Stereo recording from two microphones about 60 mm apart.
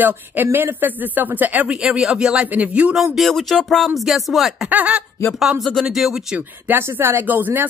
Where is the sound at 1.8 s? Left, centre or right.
Centre.